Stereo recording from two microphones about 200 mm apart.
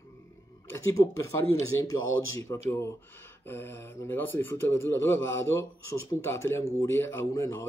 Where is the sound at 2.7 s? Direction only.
15° left (ahead or behind).